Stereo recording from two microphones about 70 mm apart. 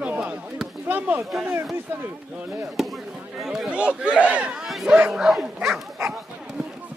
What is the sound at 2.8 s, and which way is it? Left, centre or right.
Speech, centre.